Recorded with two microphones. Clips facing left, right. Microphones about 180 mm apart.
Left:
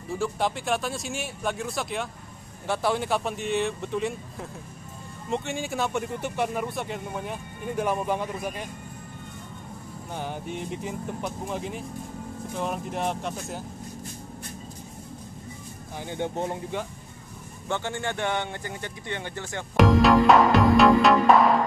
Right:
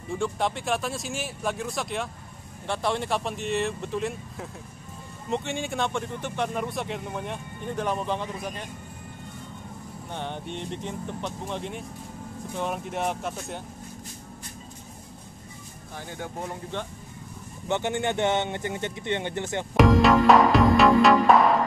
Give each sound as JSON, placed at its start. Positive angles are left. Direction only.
{"t": 0.1, "sound": "speech", "side_deg": 0}
{"t": 10.1, "sound": "speech", "side_deg": 5}
{"t": 16.0, "sound": "speech", "side_deg": 25}
{"t": 17.6, "sound": "a man's voice", "side_deg": -20}
{"t": 19.8, "sound": "music", "side_deg": 0}